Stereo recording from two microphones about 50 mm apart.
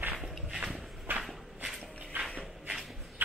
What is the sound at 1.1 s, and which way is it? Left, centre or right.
Shuffle, right.